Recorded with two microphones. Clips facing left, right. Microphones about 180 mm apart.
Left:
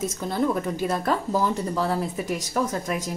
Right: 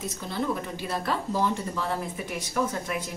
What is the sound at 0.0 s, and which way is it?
Speech, 45° left (ahead or behind).